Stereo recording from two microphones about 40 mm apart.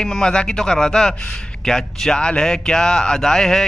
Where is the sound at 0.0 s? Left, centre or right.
Left.